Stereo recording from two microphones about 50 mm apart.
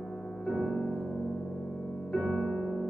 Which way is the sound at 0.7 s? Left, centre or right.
Centre.